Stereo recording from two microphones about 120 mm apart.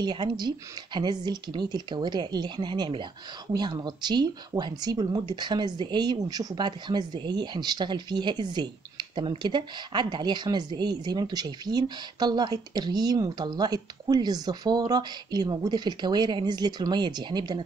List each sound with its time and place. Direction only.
0.0 s speech: 35° right (ahead or behind)